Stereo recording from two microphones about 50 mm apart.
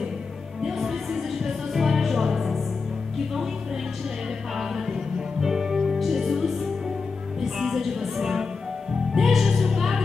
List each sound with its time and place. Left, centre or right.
0.7 s music: centre
4.6 s music: centre